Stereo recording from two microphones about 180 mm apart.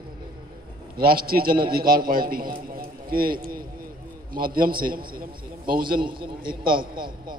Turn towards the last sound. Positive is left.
turn(degrees=-55)  # may be behind; listen again after turning